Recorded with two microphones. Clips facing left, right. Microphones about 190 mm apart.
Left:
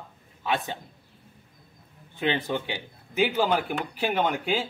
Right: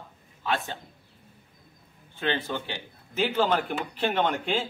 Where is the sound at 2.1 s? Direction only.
15° left (ahead or behind).